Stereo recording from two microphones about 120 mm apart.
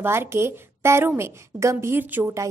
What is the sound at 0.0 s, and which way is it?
A woman's voice, 20° right (ahead or behind).